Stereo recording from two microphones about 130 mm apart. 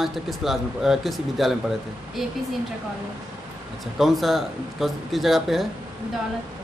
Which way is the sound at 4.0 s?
Centre (ahead or behind).